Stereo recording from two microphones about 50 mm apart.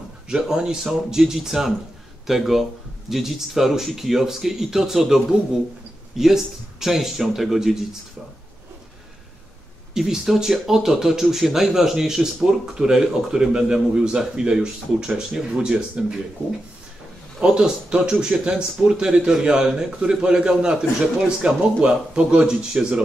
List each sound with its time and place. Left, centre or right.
0.3 s speech: centre
9.9 s speech: centre
17.4 s speech: centre